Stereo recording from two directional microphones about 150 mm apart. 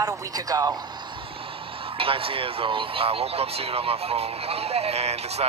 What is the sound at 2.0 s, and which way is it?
A woman's voice, 35° right (ahead or behind).